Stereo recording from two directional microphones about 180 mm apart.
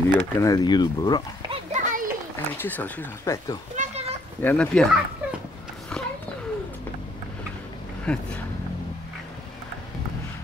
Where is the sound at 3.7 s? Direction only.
35° right (ahead or behind).